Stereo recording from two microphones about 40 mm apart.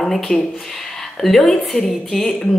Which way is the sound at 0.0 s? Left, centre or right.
Centre.